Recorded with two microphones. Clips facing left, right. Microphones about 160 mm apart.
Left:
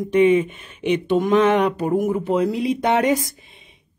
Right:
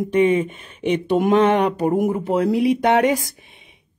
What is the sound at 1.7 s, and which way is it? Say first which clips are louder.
Speech: right 1 dB; 10° right (ahead or behind).